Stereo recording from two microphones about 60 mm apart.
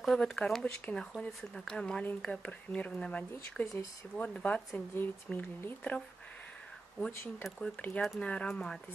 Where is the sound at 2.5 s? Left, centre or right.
Left.